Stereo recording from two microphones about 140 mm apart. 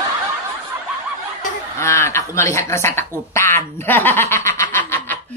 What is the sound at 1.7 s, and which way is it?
Speech, 20° left (ahead or behind).